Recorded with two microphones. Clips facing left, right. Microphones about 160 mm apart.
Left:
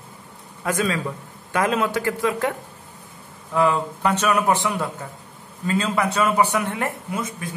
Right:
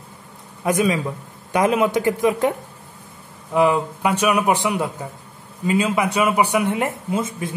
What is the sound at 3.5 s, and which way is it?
A man's voice, 15° right (ahead or behind).